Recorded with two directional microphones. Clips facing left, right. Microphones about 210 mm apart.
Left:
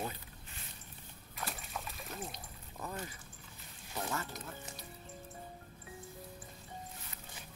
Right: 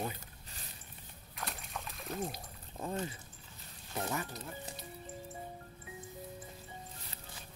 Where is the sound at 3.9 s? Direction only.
10° right (ahead or behind).